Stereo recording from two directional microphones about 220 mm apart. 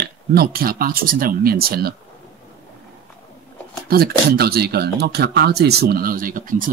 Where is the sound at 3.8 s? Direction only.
45° right (ahead or behind).